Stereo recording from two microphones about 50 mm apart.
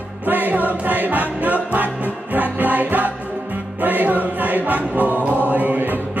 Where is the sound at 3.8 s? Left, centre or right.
Right.